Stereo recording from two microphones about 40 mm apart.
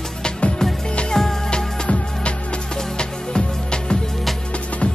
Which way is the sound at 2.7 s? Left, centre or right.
Left.